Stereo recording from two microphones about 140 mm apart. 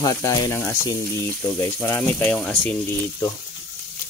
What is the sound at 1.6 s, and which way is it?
Speech, 15° left (ahead or behind).